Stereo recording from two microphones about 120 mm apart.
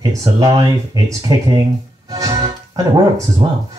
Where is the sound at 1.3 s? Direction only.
30° right (ahead or behind).